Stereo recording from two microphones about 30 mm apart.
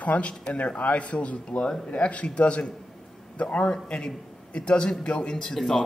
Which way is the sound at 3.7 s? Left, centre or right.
Left.